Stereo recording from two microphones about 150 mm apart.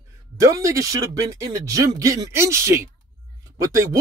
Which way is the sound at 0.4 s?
20° right (ahead or behind).